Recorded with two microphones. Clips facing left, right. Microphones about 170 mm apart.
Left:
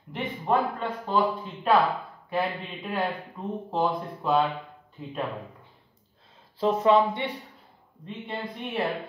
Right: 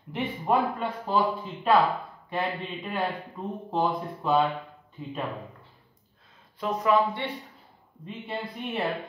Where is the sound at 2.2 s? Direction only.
Centre (ahead or behind).